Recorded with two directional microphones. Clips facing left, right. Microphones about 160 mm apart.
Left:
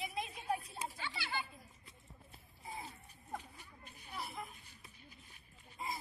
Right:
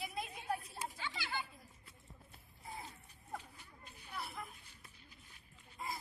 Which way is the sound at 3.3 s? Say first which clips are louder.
Left 1 dB; 15° left (ahead or behind).